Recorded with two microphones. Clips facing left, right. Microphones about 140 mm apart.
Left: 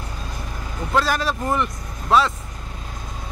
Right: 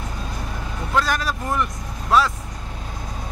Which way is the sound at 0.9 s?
Centre (ahead or behind).